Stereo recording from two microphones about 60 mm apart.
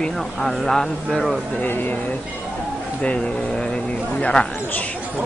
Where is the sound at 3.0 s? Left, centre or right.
Centre.